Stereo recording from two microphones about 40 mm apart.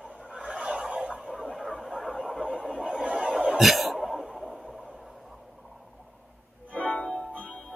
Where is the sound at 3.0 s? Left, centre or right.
Right.